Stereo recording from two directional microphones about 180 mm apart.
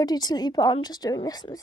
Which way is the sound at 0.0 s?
20° left (ahead or behind).